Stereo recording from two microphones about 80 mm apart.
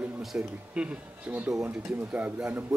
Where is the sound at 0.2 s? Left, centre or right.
Centre.